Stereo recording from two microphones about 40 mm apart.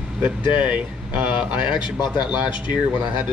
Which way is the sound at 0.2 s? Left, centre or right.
Right.